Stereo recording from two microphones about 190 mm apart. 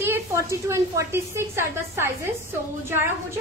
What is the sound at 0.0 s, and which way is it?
A woman's voice, 15° right (ahead or behind).